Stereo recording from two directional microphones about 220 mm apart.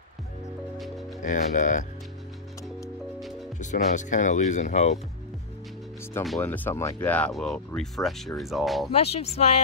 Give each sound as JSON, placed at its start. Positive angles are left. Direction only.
{"t": 1.2, "sound": "speech", "side_deg": 35}
{"t": 3.5, "sound": "speech", "side_deg": 35}
{"t": 6.2, "sound": "speech", "side_deg": 5}
{"t": 8.9, "sound": "speech", "side_deg": 30}